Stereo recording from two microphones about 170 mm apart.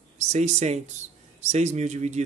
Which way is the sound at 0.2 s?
40° right (ahead or behind).